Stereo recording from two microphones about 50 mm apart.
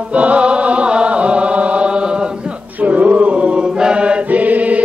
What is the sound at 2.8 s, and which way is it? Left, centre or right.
Chant, right.